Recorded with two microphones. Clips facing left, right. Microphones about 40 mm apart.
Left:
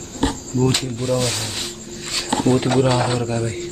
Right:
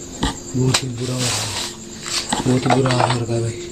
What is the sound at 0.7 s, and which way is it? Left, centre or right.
Speech, right.